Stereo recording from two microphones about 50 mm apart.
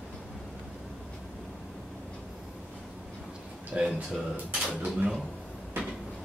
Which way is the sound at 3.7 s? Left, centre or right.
Centre.